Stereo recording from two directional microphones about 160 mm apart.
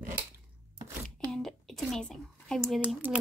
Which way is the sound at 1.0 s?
5° left (ahead or behind).